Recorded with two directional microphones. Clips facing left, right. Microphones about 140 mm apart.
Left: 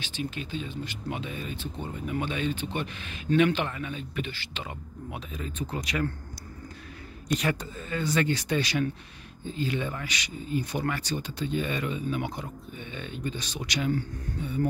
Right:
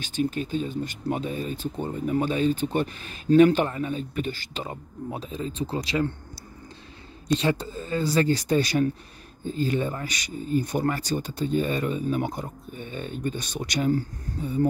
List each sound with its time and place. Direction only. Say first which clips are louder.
0.0 s speech: right 8 dB; 45° right (ahead or behind); by 6.1 s 30° right (ahead or behind)
7.2 s speech: right 4 dB; 30° right (ahead or behind)